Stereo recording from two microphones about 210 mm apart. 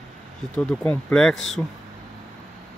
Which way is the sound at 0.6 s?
10° left (ahead or behind).